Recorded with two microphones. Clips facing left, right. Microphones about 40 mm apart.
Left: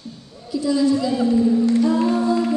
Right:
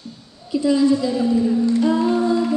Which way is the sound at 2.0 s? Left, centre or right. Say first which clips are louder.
Right 1 dB; centre.